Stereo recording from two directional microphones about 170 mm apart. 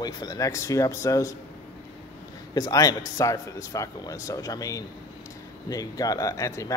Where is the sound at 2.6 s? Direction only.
20° left (ahead or behind).